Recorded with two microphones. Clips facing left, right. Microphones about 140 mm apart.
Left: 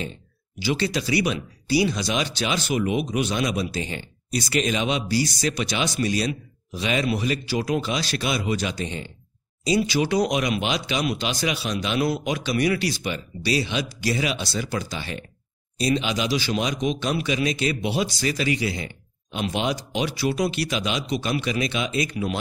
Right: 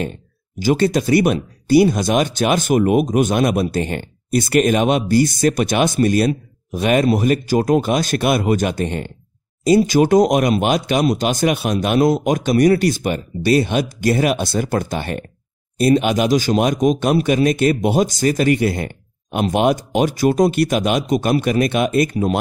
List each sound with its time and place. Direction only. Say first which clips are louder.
0.6 s speech: right 9 dB; 45° right (ahead or behind)